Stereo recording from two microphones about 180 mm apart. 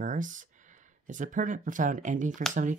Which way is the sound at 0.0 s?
45° right (ahead or behind).